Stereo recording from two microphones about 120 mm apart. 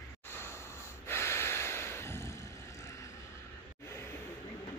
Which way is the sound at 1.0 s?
20° left (ahead or behind).